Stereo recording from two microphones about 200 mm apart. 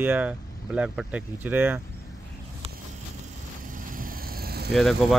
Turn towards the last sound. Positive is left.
turn(degrees=0)  # may be behind; listen again after turning